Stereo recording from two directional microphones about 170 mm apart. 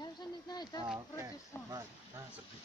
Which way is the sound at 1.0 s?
20° right (ahead or behind).